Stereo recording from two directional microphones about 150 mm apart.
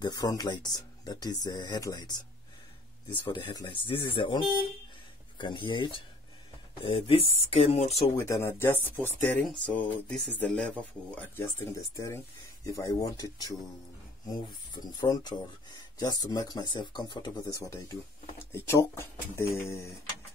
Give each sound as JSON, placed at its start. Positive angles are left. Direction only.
{"t": 0.0, "sound": "speech", "side_deg": 25}
{"t": 8.2, "sound": "speech", "side_deg": 15}
{"t": 18.4, "sound": "speech", "side_deg": 15}